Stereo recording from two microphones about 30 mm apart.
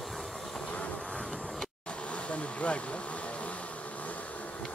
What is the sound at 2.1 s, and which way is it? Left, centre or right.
Vehicle, left.